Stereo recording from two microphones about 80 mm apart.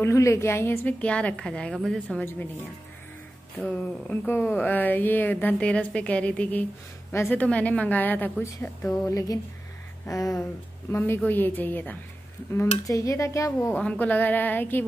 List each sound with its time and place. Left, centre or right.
0.0 s speech: left
0.8 s a woman's voice: centre
3.6 s a woman's voice: centre
7.1 s a woman's voice: left
7.4 s a woman's voice: centre
9.0 s speech: left
10.9 s a woman's voice: left
12.8 s speech: left
13.7 s a woman's voice: centre